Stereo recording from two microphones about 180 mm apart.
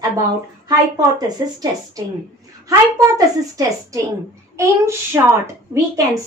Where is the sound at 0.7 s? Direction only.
20° right (ahead or behind).